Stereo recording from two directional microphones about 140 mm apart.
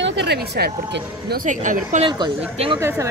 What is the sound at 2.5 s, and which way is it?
Speech, 45° right (ahead or behind).